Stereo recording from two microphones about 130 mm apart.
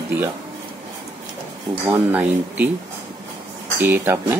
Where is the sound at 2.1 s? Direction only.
10° right (ahead or behind).